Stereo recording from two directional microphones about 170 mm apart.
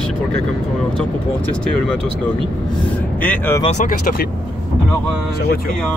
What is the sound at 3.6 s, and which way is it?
Speech, 45° left (ahead or behind).